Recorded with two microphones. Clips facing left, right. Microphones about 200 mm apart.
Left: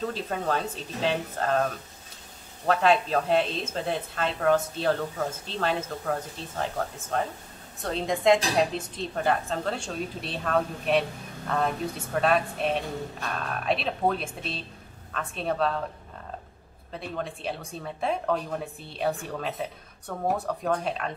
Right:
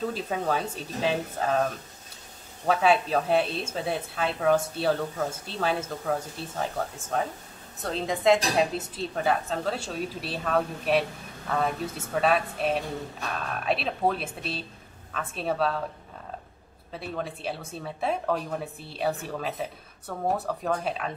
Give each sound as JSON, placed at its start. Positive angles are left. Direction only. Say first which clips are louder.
{"t": 0.0, "sound": "a woman's voice", "louder": "right 1 dB", "side_deg": -10}
{"t": 16.9, "sound": "a woman's voice", "louder": "even", "side_deg": -5}